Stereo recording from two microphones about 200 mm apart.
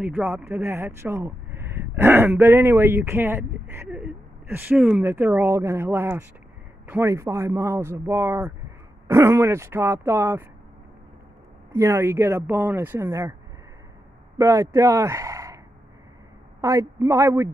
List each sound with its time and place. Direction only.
0.0 s speech: 5° right (ahead or behind)
11.7 s speech: 15° right (ahead or behind)
14.4 s speech: 15° right (ahead or behind)
16.6 s speech: 15° right (ahead or behind)